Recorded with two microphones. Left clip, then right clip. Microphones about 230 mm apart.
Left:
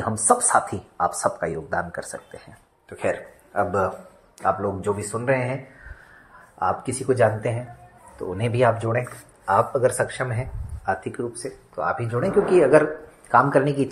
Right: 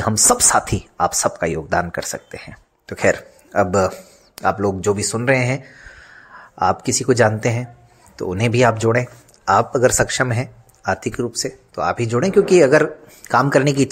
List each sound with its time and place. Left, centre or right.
0.3 s speech: right
6.6 s speech: right